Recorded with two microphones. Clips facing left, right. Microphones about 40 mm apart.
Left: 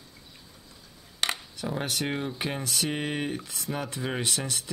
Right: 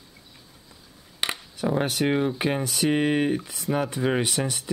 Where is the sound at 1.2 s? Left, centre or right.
Centre.